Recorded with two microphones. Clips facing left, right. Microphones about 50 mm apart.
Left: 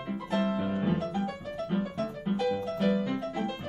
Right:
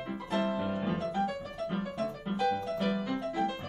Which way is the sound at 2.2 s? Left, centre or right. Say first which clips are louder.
Left 2 dB; centre.